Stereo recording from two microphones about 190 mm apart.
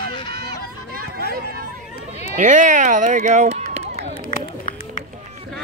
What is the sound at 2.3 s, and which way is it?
Speech, 40° right (ahead or behind).